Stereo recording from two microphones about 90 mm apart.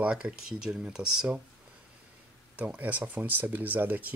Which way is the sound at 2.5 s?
15° right (ahead or behind).